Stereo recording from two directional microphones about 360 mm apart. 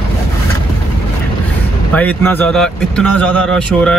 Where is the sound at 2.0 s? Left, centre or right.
Centre.